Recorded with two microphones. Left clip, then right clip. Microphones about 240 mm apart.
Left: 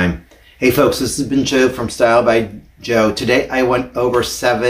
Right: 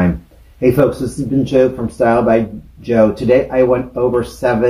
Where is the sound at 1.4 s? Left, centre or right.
Centre.